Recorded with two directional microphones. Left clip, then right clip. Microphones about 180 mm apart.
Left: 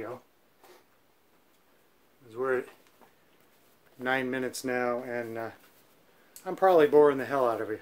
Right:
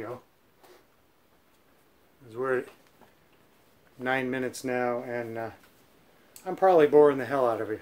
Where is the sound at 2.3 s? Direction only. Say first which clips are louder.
Right 1 dB; 10° right (ahead or behind).